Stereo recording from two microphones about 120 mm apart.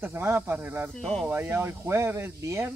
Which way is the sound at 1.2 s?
20° right (ahead or behind).